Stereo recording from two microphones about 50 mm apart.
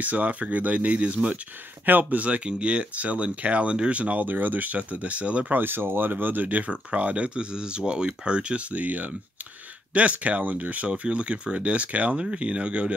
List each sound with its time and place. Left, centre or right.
0.0 s speech: right
5.6 s speech: right